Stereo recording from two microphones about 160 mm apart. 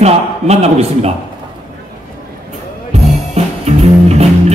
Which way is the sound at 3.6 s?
40° right (ahead or behind).